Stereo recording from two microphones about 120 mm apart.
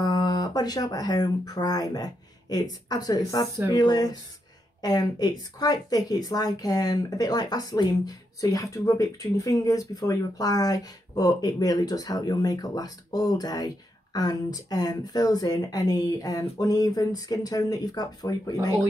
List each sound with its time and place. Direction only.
0.0 s speech: 35° left (ahead or behind)